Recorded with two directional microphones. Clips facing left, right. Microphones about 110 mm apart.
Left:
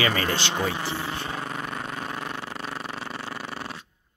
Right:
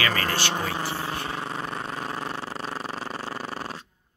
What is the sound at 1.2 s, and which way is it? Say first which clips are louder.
Vehicle: right 1 dB; 30° right (ahead or behind).